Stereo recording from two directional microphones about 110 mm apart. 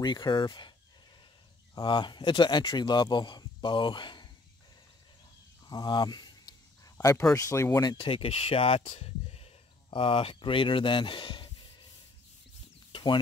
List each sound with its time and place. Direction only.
0.0 s speech: 40° left (ahead or behind)
1.8 s speech: 45° left (ahead or behind)
5.7 s a sound: 40° left (ahead or behind)
7.3 s speech: 30° left (ahead or behind)
8.0 s speech: 55° left (ahead or behind)
12.9 s chicken: 45° left (ahead or behind)